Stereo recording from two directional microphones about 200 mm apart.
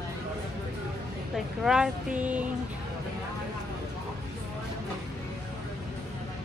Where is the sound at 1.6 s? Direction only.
5° right (ahead or behind).